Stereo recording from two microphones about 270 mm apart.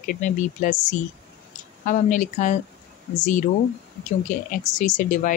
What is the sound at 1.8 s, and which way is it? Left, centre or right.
Speech, left.